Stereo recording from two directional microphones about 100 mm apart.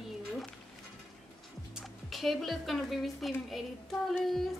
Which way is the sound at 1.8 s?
Centre (ahead or behind).